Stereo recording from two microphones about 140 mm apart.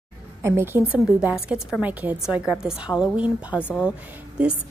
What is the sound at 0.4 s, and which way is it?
A woman's voice, 20° right (ahead or behind).